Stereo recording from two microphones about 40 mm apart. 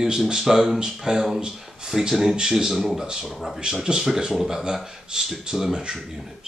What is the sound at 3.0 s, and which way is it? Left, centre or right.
Speech, centre.